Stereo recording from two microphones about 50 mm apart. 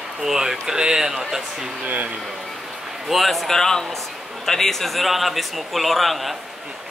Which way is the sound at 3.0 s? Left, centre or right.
Centre.